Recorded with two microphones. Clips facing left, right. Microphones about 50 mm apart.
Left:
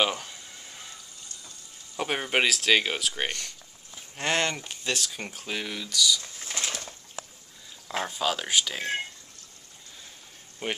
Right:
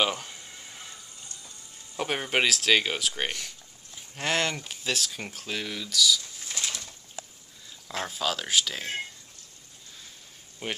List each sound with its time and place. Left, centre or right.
0.0 s speech: centre
0.3 s a sound: centre
2.0 s speech: centre
6.4 s a sound: left
8.1 s speech: centre
10.6 s speech: centre